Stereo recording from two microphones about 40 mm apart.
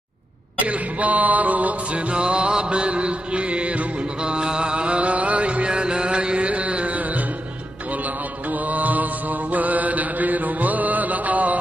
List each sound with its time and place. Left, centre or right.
0.7 s music: right
4.2 s mantra: right